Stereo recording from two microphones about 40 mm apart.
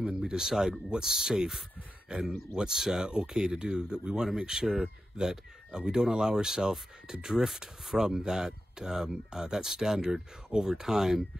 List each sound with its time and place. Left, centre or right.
0.2 s speech: centre